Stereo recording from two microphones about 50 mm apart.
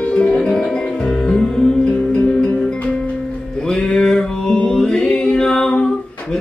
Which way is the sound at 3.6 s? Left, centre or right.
Centre.